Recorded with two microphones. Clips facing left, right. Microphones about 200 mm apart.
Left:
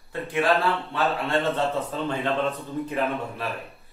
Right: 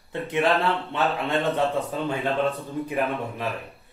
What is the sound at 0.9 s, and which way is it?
Speech, 15° right (ahead or behind).